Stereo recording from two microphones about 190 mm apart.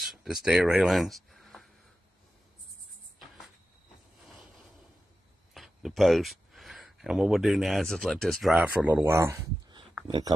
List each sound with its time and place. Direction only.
0.0 s speech: centre (ahead or behind)
5.5 s speech: centre (ahead or behind); by 10.3 s 20° right (ahead or behind)